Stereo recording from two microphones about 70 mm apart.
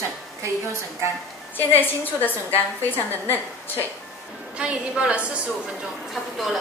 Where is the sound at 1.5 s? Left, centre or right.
Left.